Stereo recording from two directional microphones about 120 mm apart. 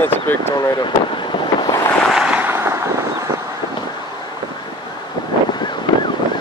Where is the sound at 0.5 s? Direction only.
35° left (ahead or behind).